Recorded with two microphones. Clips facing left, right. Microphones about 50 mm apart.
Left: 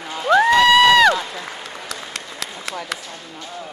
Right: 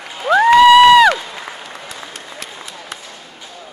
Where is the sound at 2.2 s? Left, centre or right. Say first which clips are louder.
Left 2 dB; left.